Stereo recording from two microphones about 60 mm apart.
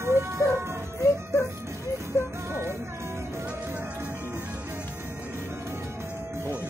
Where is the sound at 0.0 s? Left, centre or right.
Right.